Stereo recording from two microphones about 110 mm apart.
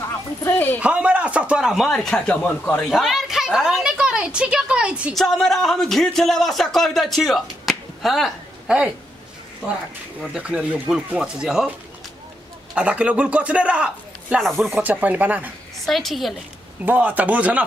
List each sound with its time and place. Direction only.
0.4 s a man's voice: 20° left (ahead or behind)
0.7 s a man's voice: 10° right (ahead or behind); by 2.8 s 15° left (ahead or behind)
2.8 s a woman's voice: centre (ahead or behind)
5.1 s a man's voice: centre (ahead or behind)
10.3 s a man's voice: 10° right (ahead or behind)
12.7 s a man's voice: 10° right (ahead or behind)
14.8 s a man's voice: 15° right (ahead or behind)
15.8 s a man's voice: centre (ahead or behind)
16.8 s a man's voice: 15° right (ahead or behind)